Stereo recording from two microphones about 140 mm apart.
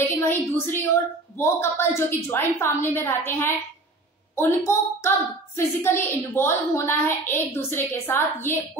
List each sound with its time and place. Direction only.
0.2 s a woman's voice: 15° left (ahead or behind)